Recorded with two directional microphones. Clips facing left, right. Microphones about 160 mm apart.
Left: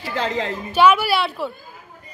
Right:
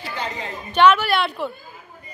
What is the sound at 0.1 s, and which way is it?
Speech, 90° left.